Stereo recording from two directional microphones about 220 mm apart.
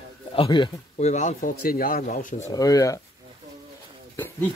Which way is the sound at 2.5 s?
15° left (ahead or behind).